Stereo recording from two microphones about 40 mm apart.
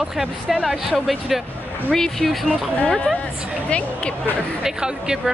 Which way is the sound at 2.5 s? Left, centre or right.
Left.